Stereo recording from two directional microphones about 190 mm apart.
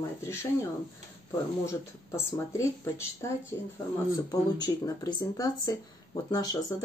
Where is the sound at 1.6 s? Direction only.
15° left (ahead or behind).